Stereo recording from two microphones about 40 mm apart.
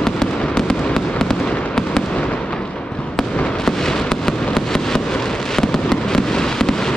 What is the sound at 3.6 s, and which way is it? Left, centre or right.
Fireworks, centre.